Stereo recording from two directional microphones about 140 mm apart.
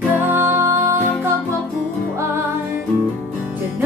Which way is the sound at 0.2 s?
15° right (ahead or behind).